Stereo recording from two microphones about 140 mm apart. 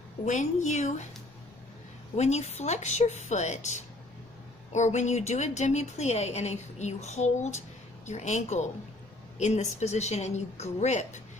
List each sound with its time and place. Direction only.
0.2 s a woman's voice: 60° left (ahead or behind)
2.1 s a woman's voice: 50° left (ahead or behind)